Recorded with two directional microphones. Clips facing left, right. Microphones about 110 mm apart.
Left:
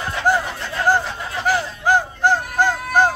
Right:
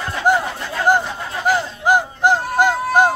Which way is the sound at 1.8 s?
15° right (ahead or behind).